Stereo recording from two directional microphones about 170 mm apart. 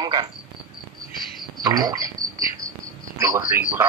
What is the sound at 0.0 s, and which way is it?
Speech, 25° right (ahead or behind).